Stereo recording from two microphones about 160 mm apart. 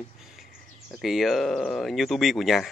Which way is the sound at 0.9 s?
Centre (ahead or behind).